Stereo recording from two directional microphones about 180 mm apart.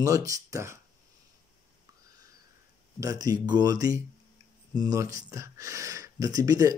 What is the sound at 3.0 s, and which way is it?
Speech, 20° right (ahead or behind).